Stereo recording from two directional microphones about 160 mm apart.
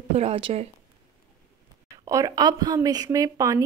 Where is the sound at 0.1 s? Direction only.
40° right (ahead or behind).